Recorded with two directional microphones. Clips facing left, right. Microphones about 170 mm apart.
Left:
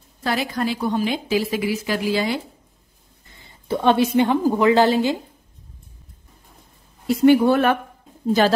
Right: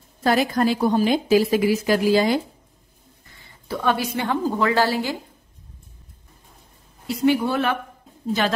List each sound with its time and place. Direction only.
0.2 s a woman's voice: 45° right (ahead or behind)
3.3 s a woman's voice: 20° left (ahead or behind)
7.2 s speech: 50° left (ahead or behind)
8.3 s a woman's voice: 40° left (ahead or behind)